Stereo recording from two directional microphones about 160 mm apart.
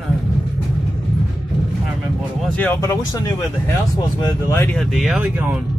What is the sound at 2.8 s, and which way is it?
Speech, 20° left (ahead or behind).